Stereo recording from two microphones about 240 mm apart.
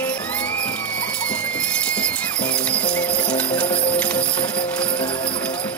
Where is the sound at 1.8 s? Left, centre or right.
Centre.